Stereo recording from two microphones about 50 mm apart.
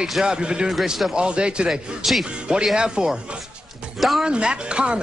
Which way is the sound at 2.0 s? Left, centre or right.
Centre.